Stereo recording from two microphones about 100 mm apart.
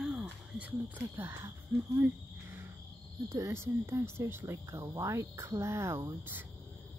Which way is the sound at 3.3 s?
25° right (ahead or behind).